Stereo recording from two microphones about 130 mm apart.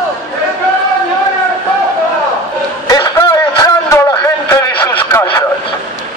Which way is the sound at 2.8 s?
25° left (ahead or behind).